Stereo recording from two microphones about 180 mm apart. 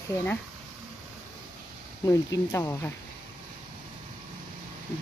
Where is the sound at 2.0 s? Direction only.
15° left (ahead or behind).